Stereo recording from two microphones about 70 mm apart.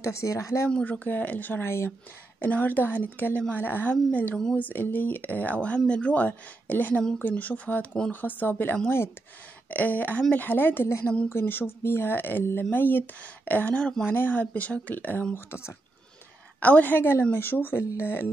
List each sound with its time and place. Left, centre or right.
0.0 s speech: left
0.7 s speech: centre; by 1.9 s left
2.4 s speech: left
15.3 s speech: left
16.5 s speech: left